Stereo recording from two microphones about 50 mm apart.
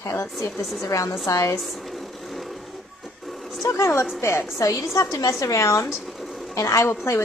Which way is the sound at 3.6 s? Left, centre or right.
Left.